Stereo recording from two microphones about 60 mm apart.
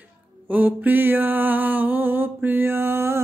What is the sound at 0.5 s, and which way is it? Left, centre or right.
Music, right.